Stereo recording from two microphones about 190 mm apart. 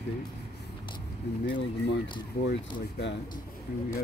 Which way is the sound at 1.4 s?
70° left (ahead or behind).